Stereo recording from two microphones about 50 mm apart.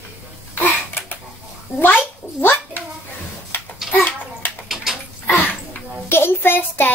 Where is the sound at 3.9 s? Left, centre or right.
Centre.